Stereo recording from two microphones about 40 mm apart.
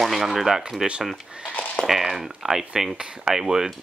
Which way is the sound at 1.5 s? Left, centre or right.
Left.